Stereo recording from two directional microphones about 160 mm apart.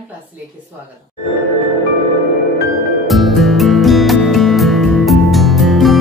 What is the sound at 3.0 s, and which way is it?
Music, centre (ahead or behind).